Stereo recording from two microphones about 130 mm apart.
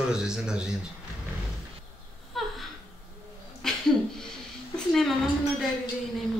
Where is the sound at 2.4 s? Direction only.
Centre (ahead or behind).